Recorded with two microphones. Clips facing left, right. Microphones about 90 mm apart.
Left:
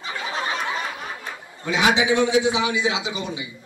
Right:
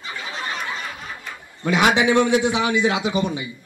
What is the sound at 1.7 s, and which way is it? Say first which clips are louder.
A man's voice: right 2 dB; 55° right (ahead or behind).